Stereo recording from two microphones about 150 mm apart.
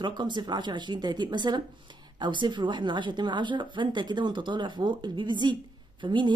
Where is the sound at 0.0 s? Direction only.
30° right (ahead or behind).